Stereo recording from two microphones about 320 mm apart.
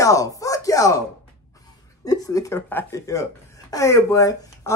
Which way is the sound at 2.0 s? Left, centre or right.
Centre.